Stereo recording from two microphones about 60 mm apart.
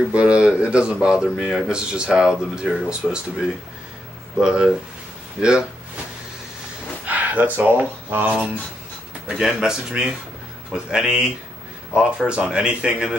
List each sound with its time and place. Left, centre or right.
0.1 s speech: centre
7.1 s speech: right
9.3 s speech: centre